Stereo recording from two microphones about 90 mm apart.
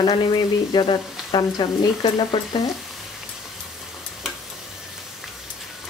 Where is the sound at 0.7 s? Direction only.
60° left (ahead or behind).